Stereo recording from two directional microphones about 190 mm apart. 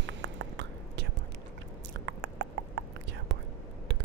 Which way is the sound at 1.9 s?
65° right (ahead or behind).